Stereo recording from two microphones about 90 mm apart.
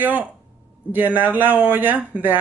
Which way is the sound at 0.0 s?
20° right (ahead or behind).